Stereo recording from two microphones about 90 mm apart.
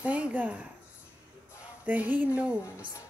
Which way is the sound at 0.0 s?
15° right (ahead or behind).